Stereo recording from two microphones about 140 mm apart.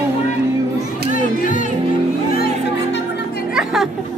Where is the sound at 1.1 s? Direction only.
65° left (ahead or behind).